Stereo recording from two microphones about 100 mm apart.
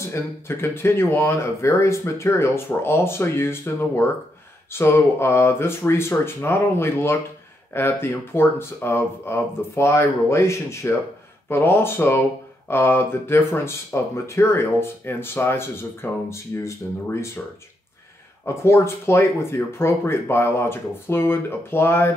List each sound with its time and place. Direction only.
0.1 s speech: 25° left (ahead or behind)
18.4 s speech: 25° left (ahead or behind)